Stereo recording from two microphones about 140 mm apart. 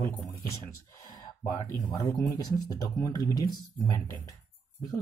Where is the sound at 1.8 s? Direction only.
20° left (ahead or behind).